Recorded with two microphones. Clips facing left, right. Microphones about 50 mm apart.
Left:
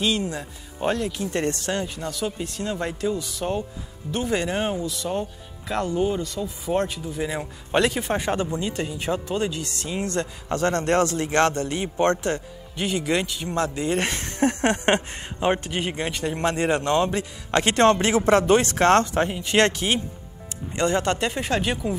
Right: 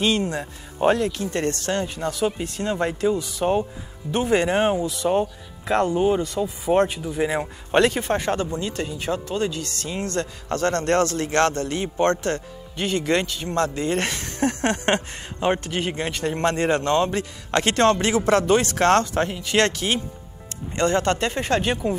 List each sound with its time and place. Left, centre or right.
0.0 s speech: centre
0.4 s speech: centre
1.3 s speech: centre
2.0 s speech: centre
7.8 s speech: centre
8.1 s speech: centre
12.7 s speech: centre
21.3 s speech: centre